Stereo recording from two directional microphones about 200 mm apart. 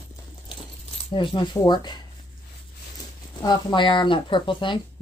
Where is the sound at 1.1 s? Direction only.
20° left (ahead or behind).